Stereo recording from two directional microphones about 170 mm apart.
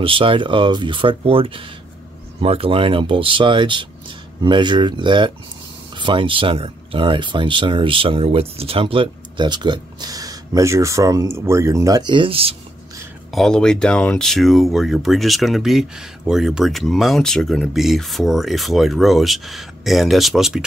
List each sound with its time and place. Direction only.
0.0 s speech: 30° right (ahead or behind)
13.3 s speech: 5° left (ahead or behind)